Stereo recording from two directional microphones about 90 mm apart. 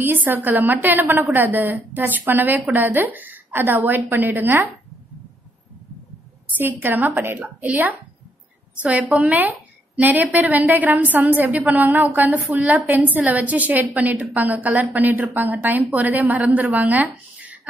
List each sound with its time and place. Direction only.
0.0 s a woman's voice: 20° right (ahead or behind)
6.6 s a woman's voice: 20° right (ahead or behind)
9.1 s a woman's voice: 15° right (ahead or behind)